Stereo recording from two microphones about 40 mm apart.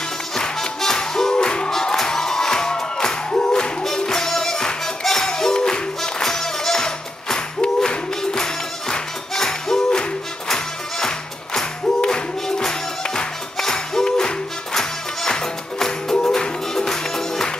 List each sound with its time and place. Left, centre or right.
0.4 s music: centre
3.8 s music: centre